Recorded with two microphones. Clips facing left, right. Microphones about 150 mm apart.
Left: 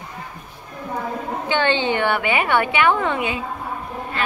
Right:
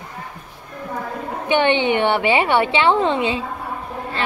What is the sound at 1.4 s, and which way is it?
A woman's voice, 20° right (ahead or behind).